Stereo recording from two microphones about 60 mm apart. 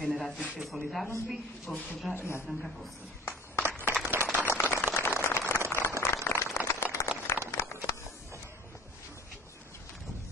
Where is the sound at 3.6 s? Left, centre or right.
Right.